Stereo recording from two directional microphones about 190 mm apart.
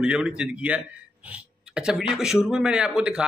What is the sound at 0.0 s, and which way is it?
A man's voice, 5° right (ahead or behind).